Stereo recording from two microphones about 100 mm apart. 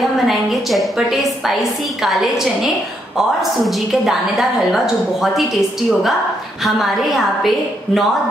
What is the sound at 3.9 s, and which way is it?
A woman's voice, 5° right (ahead or behind).